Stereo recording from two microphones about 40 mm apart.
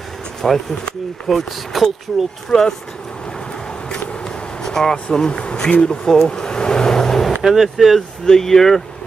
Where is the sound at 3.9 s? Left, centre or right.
Left.